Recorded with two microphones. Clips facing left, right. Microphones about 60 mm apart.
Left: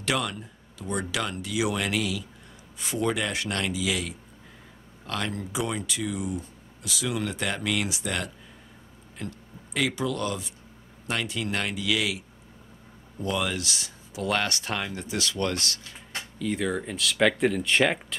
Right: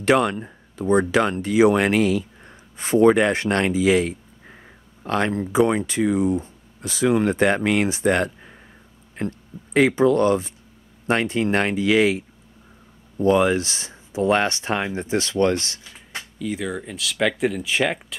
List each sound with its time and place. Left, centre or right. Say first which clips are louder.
0.0 s speech: right 10 dB; right
16.2 s speech: right 1 dB; centre